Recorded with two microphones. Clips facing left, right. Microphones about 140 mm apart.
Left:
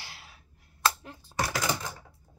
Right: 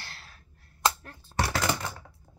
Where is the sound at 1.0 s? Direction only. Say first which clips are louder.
Left 2 dB; 15° left (ahead or behind).